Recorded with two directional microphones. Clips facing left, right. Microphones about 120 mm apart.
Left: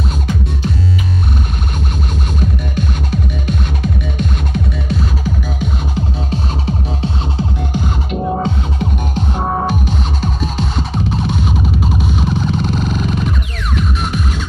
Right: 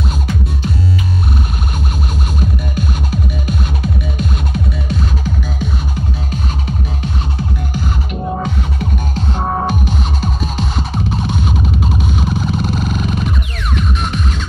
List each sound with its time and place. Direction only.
5.9 s music: 30° left (ahead or behind)
9.3 s music: centre (ahead or behind)